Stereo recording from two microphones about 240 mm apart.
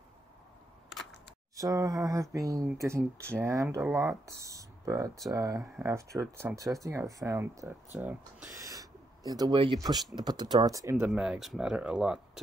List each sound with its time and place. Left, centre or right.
1.6 s speech: centre